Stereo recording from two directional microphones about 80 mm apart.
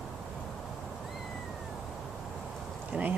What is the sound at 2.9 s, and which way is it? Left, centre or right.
Speech, centre.